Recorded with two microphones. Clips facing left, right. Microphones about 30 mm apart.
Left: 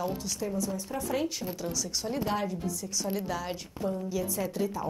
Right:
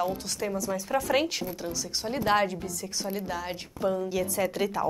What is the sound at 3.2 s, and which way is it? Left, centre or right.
Speech, centre.